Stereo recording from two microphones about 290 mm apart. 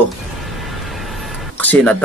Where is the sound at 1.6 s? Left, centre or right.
Centre.